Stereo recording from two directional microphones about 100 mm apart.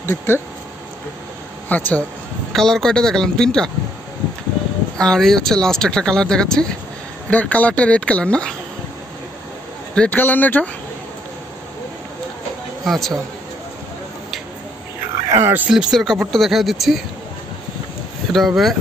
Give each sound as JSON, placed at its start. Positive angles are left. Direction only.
{"t": 0.0, "sound": "speech", "side_deg": 25}
{"t": 1.7, "sound": "speech", "side_deg": 15}
{"t": 2.5, "sound": "speech", "side_deg": 5}
{"t": 5.0, "sound": "speech", "side_deg": 5}
{"t": 9.9, "sound": "speech", "side_deg": 20}
{"t": 12.8, "sound": "a man's voice", "side_deg": 0}
{"t": 15.3, "sound": "speech", "side_deg": -20}
{"t": 15.7, "sound": "speech", "side_deg": -5}
{"t": 18.3, "sound": "speech", "side_deg": 0}